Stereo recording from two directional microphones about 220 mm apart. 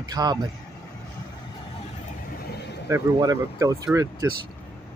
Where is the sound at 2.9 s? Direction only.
15° right (ahead or behind).